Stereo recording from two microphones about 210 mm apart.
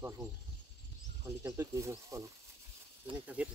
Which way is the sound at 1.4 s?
15° right (ahead or behind).